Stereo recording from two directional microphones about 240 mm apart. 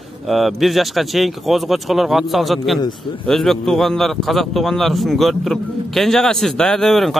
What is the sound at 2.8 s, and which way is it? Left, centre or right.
Speech, centre.